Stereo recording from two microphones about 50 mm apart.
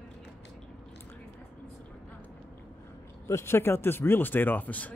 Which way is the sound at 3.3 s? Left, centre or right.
Left.